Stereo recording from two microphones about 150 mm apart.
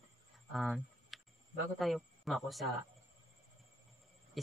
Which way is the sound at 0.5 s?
Centre (ahead or behind).